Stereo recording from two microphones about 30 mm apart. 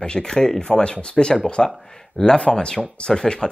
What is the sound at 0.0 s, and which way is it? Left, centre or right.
Speech, left.